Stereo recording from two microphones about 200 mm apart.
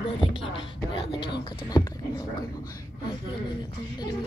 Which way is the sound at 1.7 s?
20° left (ahead or behind).